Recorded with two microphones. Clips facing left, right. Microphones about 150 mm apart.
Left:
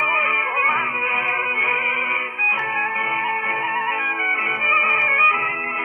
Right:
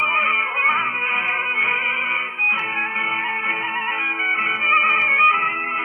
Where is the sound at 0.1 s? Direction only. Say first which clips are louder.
Left 2 dB; 30° left (ahead or behind).